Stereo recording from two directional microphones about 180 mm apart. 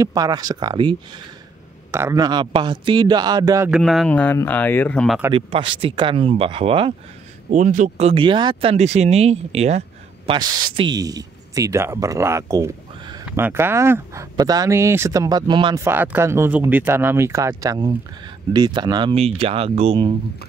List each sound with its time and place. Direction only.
0.0 s speech: 20° right (ahead or behind)
3.7 s speech: centre (ahead or behind)
5.3 s speech: 30° right (ahead or behind)
7.4 s a man's voice: 45° right (ahead or behind)
8.1 s speech: 25° right (ahead or behind)
15.8 s speech: 10° right (ahead or behind); by 20.1 s 35° right (ahead or behind)